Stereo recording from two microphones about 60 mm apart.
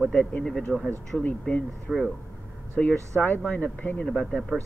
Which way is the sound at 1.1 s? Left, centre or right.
Centre.